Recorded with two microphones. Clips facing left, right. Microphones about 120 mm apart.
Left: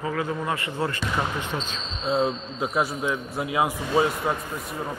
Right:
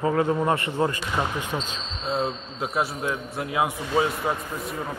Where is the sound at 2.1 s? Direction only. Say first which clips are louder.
Left 3 dB; centre (ahead or behind).